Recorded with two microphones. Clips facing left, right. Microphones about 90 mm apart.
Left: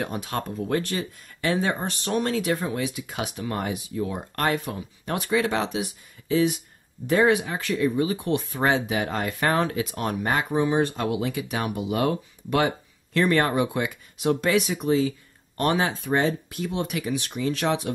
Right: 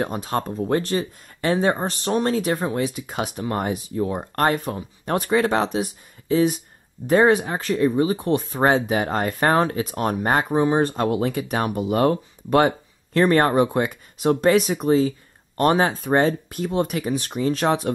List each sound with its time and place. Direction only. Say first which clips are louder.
0.0 s speech: right 5 dB; 35° right (ahead or behind)